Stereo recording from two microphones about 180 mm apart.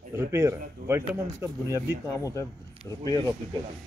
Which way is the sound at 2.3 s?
15° left (ahead or behind).